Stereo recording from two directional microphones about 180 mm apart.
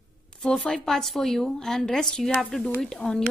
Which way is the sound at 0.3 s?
Centre (ahead or behind).